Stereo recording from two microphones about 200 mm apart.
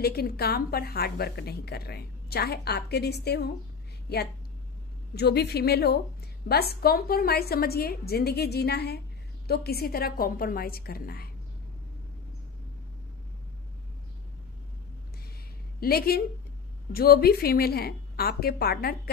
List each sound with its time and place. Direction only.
0.0 s a woman's voice: 50° left (ahead or behind)
5.1 s a woman's voice: 55° left (ahead or behind)
15.8 s a woman's voice: 50° left (ahead or behind)